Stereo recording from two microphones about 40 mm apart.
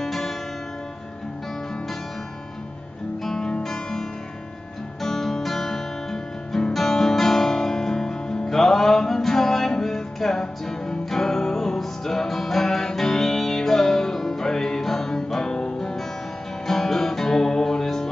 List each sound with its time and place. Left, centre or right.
0.0 s music: centre
3.3 s guitar: centre
6.7 s music: centre